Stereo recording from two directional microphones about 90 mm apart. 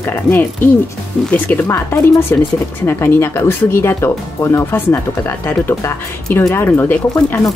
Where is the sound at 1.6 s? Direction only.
35° left (ahead or behind).